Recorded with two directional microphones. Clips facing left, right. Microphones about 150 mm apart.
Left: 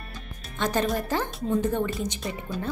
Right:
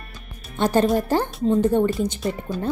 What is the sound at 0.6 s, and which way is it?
A woman's voice, 30° right (ahead or behind).